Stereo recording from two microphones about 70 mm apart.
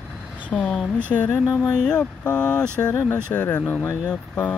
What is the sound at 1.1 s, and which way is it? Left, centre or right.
Speech, centre.